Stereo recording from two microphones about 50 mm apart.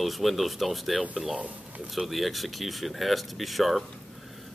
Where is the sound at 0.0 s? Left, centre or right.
Centre.